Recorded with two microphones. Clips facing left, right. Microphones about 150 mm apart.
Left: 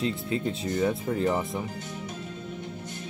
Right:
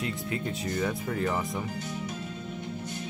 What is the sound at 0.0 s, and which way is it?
Speech, 25° left (ahead or behind).